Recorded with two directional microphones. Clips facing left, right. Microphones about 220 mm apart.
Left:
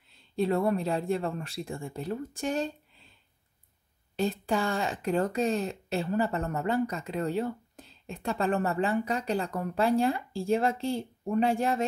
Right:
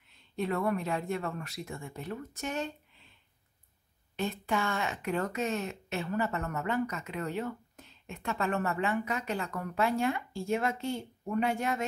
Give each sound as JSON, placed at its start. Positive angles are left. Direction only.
{"t": 0.1, "sound": "speech", "side_deg": 30}
{"t": 4.2, "sound": "speech", "side_deg": 35}